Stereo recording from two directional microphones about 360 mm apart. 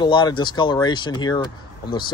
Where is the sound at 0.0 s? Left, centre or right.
Centre.